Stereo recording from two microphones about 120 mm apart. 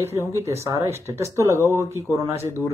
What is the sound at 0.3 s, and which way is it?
Speech, 25° right (ahead or behind).